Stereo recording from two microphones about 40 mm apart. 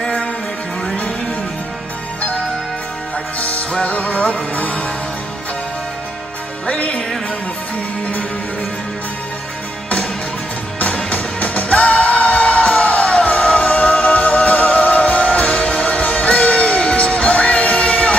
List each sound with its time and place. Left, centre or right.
0.0 s music: left
3.3 s music: left
6.7 s music: left
11.1 s music: left